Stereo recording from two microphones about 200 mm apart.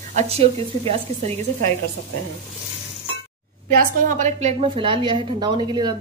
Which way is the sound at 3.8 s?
40° right (ahead or behind).